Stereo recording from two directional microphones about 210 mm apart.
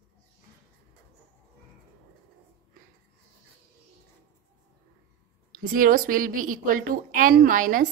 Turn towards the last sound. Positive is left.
turn(degrees=-40)  # may be behind; listen again after turning